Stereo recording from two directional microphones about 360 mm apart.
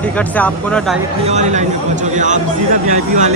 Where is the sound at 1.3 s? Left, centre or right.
Centre.